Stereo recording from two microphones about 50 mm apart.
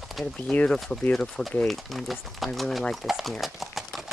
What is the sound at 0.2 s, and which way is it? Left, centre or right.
Speech, centre.